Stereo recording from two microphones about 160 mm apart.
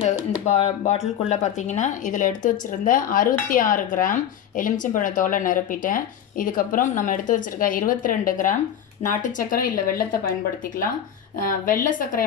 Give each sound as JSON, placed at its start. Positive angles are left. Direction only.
{"t": 0.5, "sound": "speech", "side_deg": 45}
{"t": 11.3, "sound": "speech", "side_deg": 60}